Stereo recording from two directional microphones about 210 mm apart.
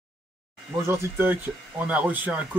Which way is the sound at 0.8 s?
10° right (ahead or behind).